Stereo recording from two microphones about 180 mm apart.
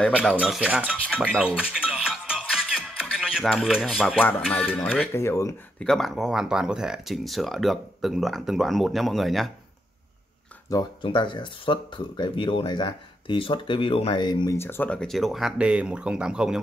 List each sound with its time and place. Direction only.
0.1 s cutlery: 5° right (ahead or behind)
0.9 s speech: 5° left (ahead or behind)
1.2 s music: 5° right (ahead or behind)
4.4 s speech: 5° left (ahead or behind)
5.8 s speech: 5° left (ahead or behind)
10.7 s speech: 25° left (ahead or behind); by 16.6 s 5° right (ahead or behind)